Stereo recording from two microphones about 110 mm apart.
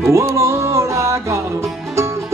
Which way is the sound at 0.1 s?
25° right (ahead or behind).